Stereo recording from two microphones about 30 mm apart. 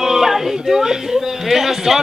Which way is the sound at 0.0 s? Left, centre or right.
Centre.